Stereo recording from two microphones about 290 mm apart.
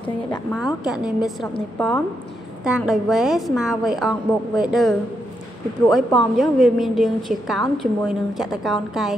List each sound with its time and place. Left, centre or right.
0.6 s a woman's voice: centre
5.9 s a woman's voice: centre